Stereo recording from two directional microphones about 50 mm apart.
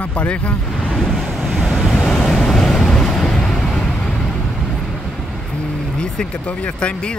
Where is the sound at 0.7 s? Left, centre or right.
Centre.